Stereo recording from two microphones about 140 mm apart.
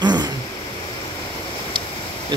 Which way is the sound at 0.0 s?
30° right (ahead or behind).